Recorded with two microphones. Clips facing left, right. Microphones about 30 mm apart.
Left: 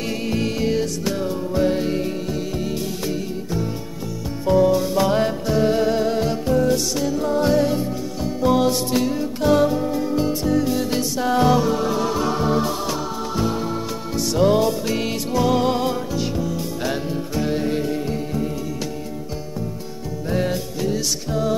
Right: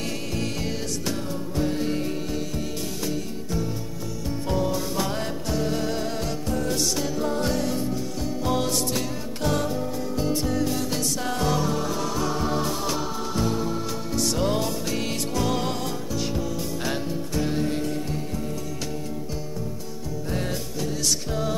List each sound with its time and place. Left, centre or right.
0.3 s music: centre
1.9 s music: centre
4.5 s music: centre
7.4 s music: centre
9.7 s music: left
10.4 s music: centre
10.8 s music: centre
14.3 s music: centre
15.7 s music: left
16.2 s music: centre
20.2 s music: centre
21.3 s music: centre